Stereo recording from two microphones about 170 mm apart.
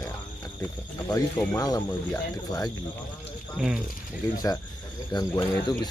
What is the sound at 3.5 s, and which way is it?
Speech, 5° right (ahead or behind).